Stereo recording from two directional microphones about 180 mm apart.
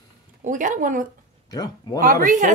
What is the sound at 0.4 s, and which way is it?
Speech, 45° right (ahead or behind).